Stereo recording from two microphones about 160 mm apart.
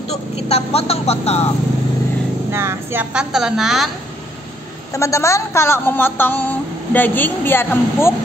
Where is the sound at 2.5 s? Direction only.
15° right (ahead or behind).